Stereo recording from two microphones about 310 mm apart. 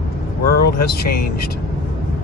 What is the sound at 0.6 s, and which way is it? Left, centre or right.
Speech, left.